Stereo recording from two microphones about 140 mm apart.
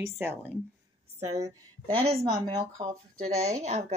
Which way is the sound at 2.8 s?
35° right (ahead or behind).